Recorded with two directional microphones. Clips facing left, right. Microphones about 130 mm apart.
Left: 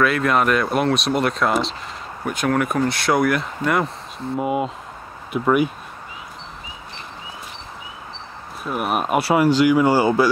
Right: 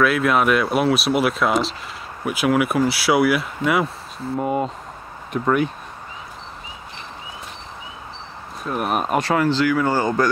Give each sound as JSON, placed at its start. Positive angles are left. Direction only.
{"t": 0.0, "sound": "speech", "side_deg": 0}
{"t": 4.4, "sound": "speech", "side_deg": 5}
{"t": 8.6, "sound": "speech", "side_deg": 5}